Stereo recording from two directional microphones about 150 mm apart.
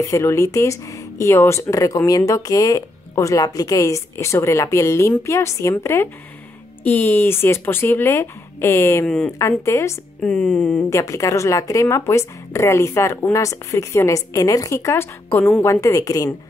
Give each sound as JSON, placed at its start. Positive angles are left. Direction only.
{"t": 0.0, "sound": "speech", "side_deg": 20}
{"t": 9.0, "sound": "speech", "side_deg": 5}
{"t": 9.4, "sound": "speech", "side_deg": 20}
{"t": 10.2, "sound": "speech", "side_deg": 5}
{"t": 10.9, "sound": "speech", "side_deg": 20}